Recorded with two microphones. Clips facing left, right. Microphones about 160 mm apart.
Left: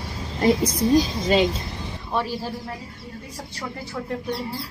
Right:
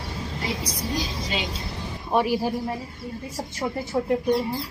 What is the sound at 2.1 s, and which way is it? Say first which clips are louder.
Speech: right 5 dB; 15° right (ahead or behind).